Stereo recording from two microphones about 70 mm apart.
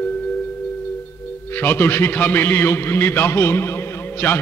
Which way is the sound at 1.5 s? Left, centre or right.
Left.